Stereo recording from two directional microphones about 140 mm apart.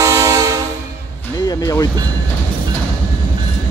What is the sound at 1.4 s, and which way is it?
Music, 25° left (ahead or behind).